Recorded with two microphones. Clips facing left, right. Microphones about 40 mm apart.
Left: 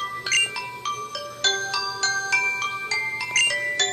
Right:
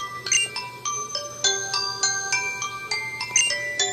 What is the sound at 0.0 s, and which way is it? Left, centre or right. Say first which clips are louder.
Glockenspiel: left 3 dB; centre.